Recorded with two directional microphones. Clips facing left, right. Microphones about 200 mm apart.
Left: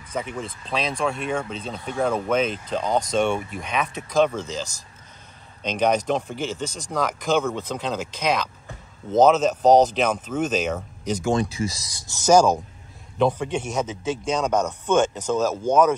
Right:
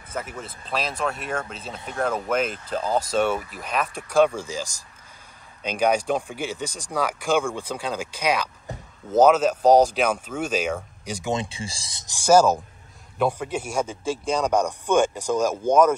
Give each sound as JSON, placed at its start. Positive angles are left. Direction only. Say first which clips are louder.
{"t": 0.1, "sound": "speech", "louder": "left 3 dB", "side_deg": -5}
{"t": 11.3, "sound": "speech", "louder": "left 5 dB", "side_deg": -30}
{"t": 12.2, "sound": "speech", "louder": "even", "side_deg": -5}